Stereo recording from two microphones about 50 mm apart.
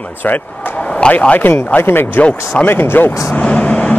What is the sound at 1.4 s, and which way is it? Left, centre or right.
Speech, left.